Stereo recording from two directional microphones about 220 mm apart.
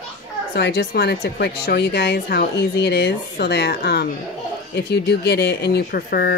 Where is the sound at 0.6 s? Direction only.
50° left (ahead or behind).